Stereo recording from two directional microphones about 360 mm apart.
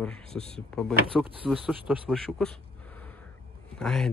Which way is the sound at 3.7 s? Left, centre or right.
Centre.